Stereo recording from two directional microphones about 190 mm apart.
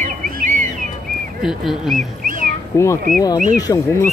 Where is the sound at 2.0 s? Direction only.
45° right (ahead or behind).